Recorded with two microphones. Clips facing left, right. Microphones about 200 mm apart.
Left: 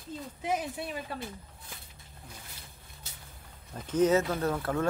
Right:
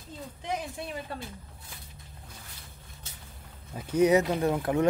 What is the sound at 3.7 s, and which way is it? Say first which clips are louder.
Speech: right 2 dB; 10° right (ahead or behind).